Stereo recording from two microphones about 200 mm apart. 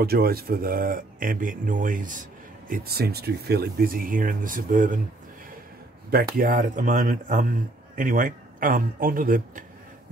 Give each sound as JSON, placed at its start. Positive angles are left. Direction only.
{"t": 0.0, "sound": "speech", "side_deg": -50}
{"t": 6.0, "sound": "speech", "side_deg": -45}